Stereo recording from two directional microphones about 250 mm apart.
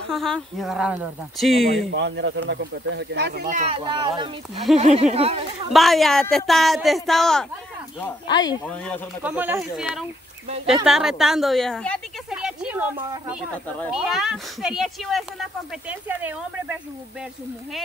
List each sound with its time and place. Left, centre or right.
0.1 s a woman's voice: centre
2.0 s speech: right
5.7 s a woman's voice: centre
8.3 s speech: centre
8.6 s a woman's voice: centre
9.2 s a woman's voice: centre